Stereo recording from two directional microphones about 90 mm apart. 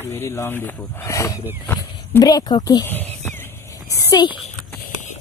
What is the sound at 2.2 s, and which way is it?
Speech, 50° left (ahead or behind).